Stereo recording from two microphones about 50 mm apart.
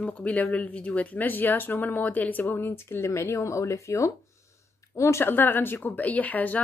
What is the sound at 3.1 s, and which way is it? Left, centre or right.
Speech, left.